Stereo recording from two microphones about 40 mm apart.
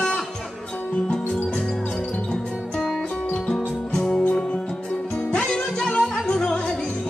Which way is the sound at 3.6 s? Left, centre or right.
Left.